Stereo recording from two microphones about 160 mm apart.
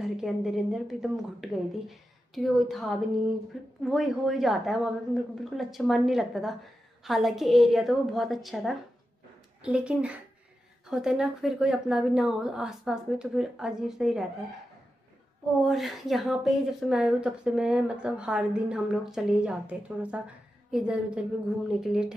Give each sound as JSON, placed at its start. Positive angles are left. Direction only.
{"t": 0.0, "sound": "a woman's voice", "side_deg": 0}
{"t": 15.6, "sound": "a woman's voice", "side_deg": 0}